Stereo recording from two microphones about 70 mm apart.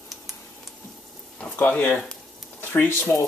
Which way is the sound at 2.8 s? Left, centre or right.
Left.